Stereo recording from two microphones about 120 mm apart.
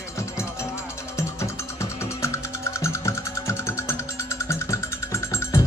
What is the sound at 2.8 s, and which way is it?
Music, 25° left (ahead or behind).